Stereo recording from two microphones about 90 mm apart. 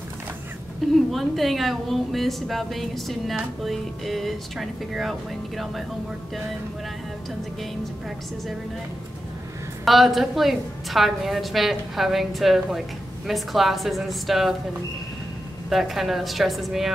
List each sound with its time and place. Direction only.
0.9 s a woman's voice: centre (ahead or behind)
9.8 s a woman's voice: centre (ahead or behind)
15.7 s a woman's voice: centre (ahead or behind)